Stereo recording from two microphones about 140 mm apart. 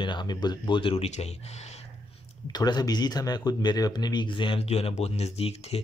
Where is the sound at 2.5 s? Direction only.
30° left (ahead or behind).